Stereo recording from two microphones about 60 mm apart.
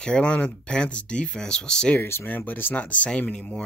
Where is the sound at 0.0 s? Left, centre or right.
Centre.